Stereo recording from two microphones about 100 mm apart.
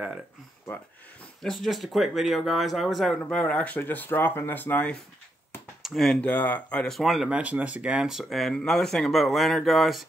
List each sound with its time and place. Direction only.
1.4 s speech: 5° left (ahead or behind)
3.3 s speech: 10° left (ahead or behind)
5.8 s a sound: centre (ahead or behind)
6.2 s speech: 15° left (ahead or behind); by 10.0 s centre (ahead or behind)